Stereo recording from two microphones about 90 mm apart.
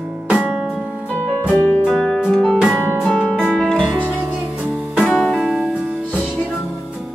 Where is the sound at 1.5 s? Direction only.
20° left (ahead or behind).